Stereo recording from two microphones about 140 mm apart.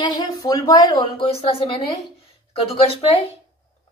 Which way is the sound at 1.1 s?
40° left (ahead or behind).